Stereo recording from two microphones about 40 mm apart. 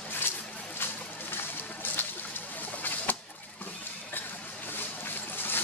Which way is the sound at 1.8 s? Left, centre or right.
Left.